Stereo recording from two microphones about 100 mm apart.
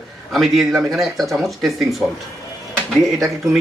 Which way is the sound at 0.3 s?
Centre (ahead or behind).